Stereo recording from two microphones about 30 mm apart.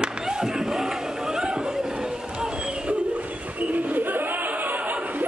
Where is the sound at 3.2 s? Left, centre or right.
Right.